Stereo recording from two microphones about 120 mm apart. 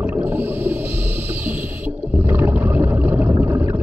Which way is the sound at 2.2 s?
15° right (ahead or behind).